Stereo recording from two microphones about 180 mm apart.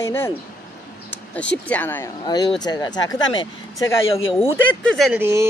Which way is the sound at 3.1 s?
90° left.